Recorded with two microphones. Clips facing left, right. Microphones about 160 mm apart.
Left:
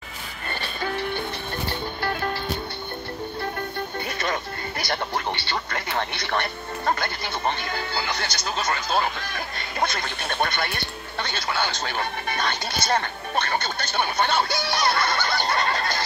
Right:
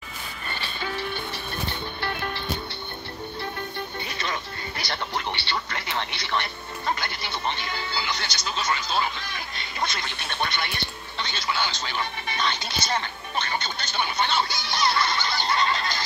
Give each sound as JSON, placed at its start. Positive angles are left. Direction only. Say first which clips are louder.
{"t": 0.6, "sound": "music", "louder": "left 4 dB", "side_deg": 50}
{"t": 4.2, "sound": "speech", "louder": "left 4 dB", "side_deg": 50}